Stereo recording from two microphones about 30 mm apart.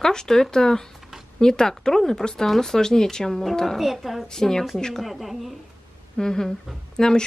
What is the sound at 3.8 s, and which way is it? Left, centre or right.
Speech, centre.